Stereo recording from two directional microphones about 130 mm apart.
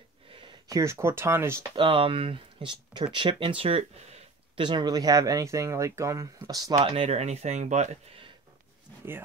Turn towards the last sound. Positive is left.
turn(degrees=-65)  # may be behind; listen again after turning